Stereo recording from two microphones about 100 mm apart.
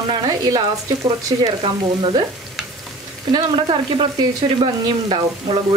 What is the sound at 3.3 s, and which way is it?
Frying, 60° right (ahead or behind).